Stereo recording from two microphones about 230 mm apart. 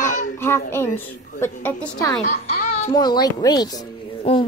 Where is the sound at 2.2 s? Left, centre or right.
Left.